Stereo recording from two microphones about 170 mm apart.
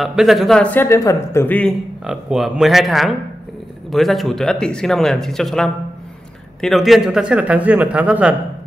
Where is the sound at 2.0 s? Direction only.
Centre (ahead or behind).